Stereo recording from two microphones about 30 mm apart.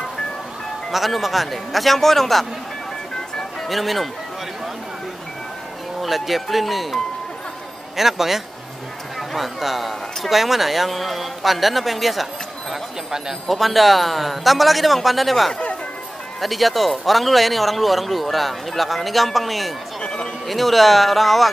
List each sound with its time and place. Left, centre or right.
0.9 s speech: centre
3.6 s speech: centre
5.9 s a man's voice: centre
13.5 s speech: centre
20.0 s music: left
20.4 s speech: centre